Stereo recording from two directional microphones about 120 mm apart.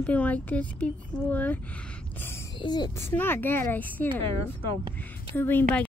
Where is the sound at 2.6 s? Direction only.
35° left (ahead or behind).